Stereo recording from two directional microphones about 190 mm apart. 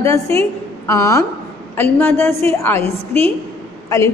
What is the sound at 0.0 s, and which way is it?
A woman's voice, 15° left (ahead or behind).